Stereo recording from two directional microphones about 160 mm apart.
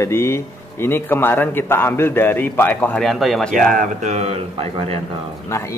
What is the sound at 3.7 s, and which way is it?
Speech, 50° right (ahead or behind).